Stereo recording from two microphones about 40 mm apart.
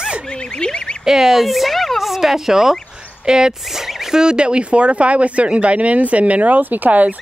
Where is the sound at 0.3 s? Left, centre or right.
Left.